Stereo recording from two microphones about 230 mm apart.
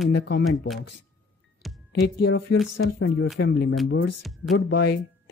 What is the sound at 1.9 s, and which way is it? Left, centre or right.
Speech, left.